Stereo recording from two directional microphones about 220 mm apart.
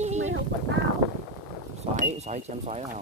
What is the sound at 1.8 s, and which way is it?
Speech, 30° right (ahead or behind).